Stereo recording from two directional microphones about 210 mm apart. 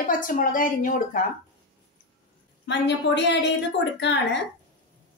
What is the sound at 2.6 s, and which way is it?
Speech, 55° left (ahead or behind).